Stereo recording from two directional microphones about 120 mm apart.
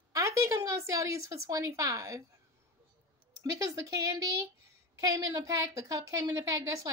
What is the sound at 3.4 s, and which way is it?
Speech, 30° right (ahead or behind).